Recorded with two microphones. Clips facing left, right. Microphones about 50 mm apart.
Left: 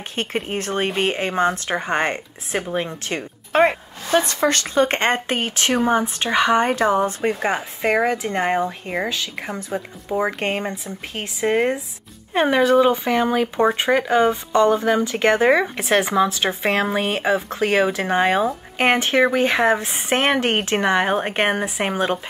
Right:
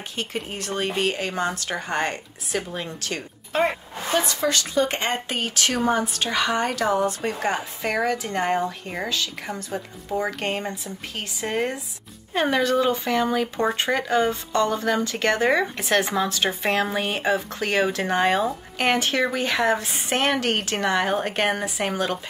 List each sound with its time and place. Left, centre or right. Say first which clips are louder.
0.1 s speech: left 6 dB; left
3.5 s speech: left 6 dB; left; by 18.5 s centre
18.8 s speech: left 5 dB; left